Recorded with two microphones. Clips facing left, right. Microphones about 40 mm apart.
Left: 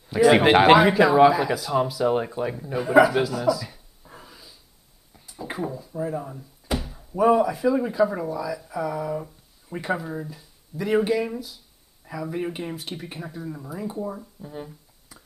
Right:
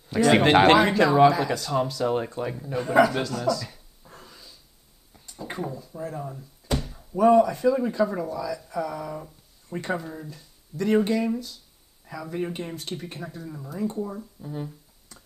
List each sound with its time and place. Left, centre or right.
0.1 s speech: centre